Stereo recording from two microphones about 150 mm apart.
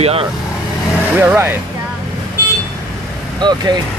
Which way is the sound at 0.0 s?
40° right (ahead or behind).